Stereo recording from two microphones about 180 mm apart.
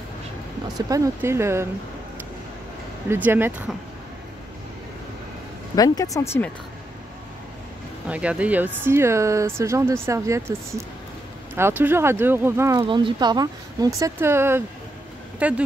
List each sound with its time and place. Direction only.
0.7 s speech: 20° right (ahead or behind)
3.1 s speech: 10° right (ahead or behind)
5.8 s speech: 20° left (ahead or behind)
8.1 s speech: 5° right (ahead or behind)
12.8 s speech: 25° right (ahead or behind); by 15.6 s 5° right (ahead or behind)